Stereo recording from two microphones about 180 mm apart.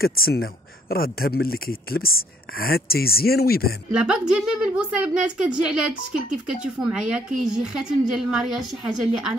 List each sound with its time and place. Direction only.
0.0 s speech: 60° left (ahead or behind)
3.9 s a woman's voice: 5° right (ahead or behind)